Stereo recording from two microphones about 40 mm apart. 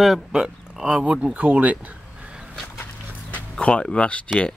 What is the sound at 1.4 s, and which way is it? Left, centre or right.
Speech, right.